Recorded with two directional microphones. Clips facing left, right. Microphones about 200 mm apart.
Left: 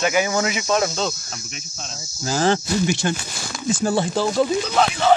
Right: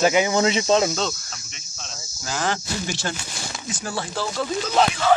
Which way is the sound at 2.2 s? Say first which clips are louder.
Left 7 dB; 30° left (ahead or behind).